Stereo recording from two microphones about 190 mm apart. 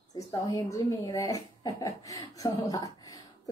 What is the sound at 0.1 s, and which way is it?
Speech, 20° left (ahead or behind).